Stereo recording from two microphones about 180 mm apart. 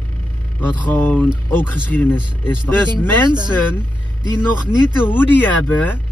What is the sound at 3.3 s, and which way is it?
Speech, 25° right (ahead or behind).